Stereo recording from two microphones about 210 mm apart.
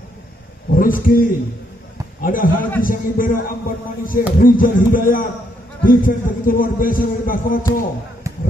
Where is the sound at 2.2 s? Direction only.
40° left (ahead or behind).